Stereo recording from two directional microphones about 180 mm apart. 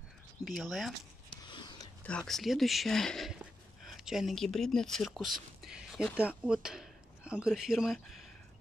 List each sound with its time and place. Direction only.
0.5 s speech: centre (ahead or behind)
1.4 s a sound: 25° left (ahead or behind)
2.0 s speech: 5° left (ahead or behind)